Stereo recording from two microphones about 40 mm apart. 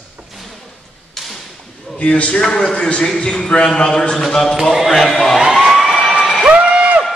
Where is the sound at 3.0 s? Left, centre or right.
Centre.